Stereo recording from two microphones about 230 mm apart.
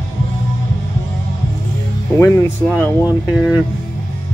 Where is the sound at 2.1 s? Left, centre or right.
Centre.